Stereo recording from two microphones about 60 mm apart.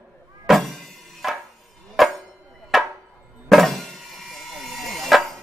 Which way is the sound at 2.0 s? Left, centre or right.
Centre.